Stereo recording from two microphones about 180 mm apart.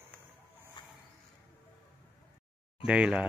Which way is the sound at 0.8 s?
25° left (ahead or behind).